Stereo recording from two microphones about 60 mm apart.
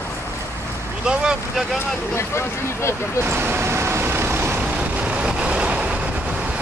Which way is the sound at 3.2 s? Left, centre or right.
Right.